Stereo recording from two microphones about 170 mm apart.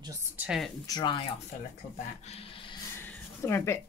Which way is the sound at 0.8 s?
25° left (ahead or behind).